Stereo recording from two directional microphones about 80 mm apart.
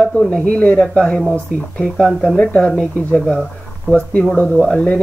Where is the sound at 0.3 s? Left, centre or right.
Centre.